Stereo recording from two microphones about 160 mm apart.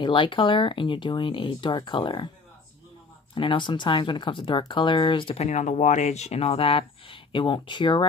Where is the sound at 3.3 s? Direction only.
30° left (ahead or behind).